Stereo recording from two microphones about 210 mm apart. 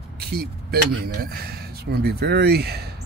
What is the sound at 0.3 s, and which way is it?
Speech, 50° right (ahead or behind).